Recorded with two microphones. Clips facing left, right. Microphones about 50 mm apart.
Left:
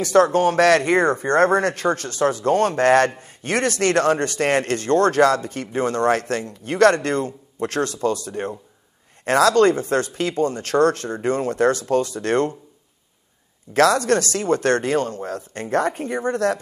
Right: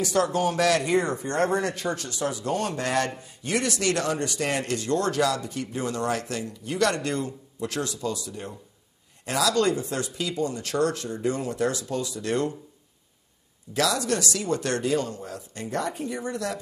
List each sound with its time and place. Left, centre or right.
0.0 s speech: left
13.7 s speech: left